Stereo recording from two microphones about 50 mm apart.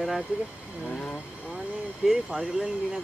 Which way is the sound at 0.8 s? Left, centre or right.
Left.